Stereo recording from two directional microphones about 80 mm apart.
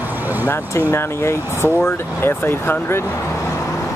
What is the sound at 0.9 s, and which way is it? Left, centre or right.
Speech, left.